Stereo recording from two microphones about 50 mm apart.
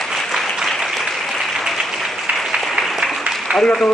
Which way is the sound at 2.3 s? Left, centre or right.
Right.